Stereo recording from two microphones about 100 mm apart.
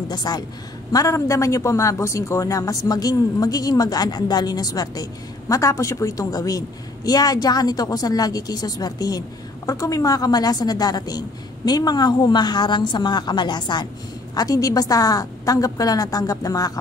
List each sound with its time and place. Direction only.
0.1 s a woman's voice: 40° left (ahead or behind)